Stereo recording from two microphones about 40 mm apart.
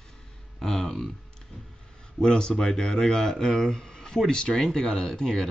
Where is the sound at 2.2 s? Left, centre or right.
Centre.